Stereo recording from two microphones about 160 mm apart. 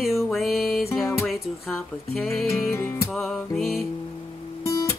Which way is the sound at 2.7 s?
15° left (ahead or behind).